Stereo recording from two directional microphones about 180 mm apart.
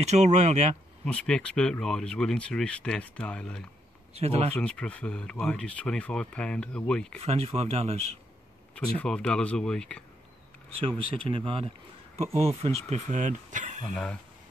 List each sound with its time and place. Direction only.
0.0 s speech: 40° right (ahead or behind)
1.0 s speech: 5° left (ahead or behind)
4.1 s speech: 35° right (ahead or behind)
4.6 s speech: 5° left (ahead or behind)
7.2 s speech: 35° right (ahead or behind)
8.7 s speech: 5° left (ahead or behind)
11.2 s speech: 30° right (ahead or behind)